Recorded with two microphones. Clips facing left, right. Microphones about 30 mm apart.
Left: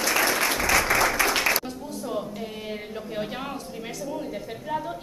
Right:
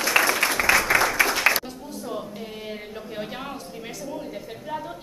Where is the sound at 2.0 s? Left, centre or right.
Centre.